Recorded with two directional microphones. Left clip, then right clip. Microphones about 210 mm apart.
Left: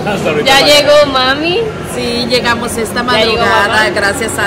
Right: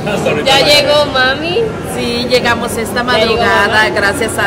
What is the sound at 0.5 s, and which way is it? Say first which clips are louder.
Speech: left 2 dB; 35° left (ahead or behind).